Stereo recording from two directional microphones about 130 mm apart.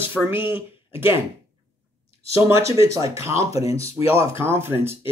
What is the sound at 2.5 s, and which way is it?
Speech, 25° right (ahead or behind).